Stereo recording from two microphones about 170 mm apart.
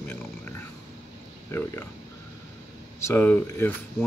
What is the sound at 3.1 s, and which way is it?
Speech, 10° left (ahead or behind).